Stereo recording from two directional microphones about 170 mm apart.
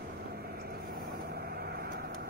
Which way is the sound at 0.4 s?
70° right (ahead or behind).